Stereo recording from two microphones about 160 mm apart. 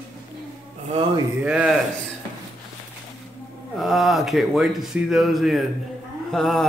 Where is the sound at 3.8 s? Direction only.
Centre (ahead or behind).